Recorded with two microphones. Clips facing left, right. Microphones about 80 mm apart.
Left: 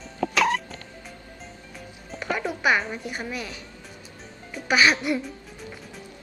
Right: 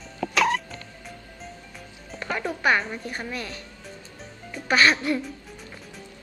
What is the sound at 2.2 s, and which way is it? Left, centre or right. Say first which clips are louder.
A woman's voice: left 1 dB; centre.